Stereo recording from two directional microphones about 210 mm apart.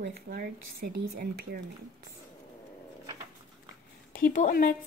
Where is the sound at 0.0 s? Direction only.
45° right (ahead or behind).